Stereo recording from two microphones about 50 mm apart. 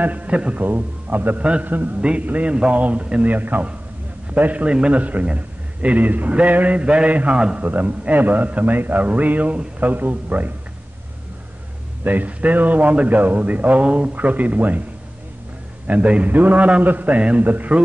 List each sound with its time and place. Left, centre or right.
0.0 s a man's voice: right
1.4 s a man's voice: right
1.7 s a man's voice: right
2.0 s a man's voice: right
7.6 s a man's voice: right
12.0 s a man's voice: right
15.9 s a man's voice: right